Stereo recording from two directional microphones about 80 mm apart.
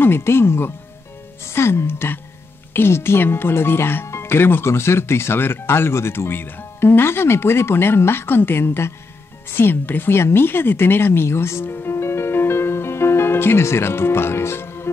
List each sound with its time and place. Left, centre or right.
0.0 s speech: left